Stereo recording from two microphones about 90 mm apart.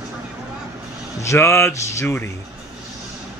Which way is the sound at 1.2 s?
30° left (ahead or behind).